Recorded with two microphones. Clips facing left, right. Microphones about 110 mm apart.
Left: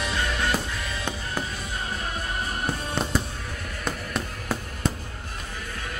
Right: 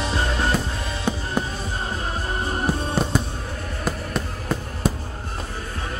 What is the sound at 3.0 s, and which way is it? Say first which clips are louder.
Music: right 3 dB; centre (ahead or behind).